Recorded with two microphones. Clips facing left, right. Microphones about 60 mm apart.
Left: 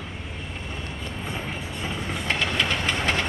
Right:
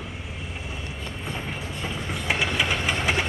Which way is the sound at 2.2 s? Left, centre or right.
Centre.